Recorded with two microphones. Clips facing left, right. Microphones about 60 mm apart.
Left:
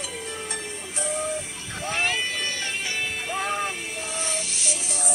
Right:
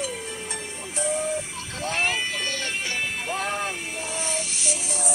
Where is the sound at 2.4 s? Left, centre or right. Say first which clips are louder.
Right 1 dB; centre.